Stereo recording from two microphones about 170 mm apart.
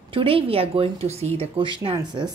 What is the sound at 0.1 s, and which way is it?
Speech, 35° right (ahead or behind).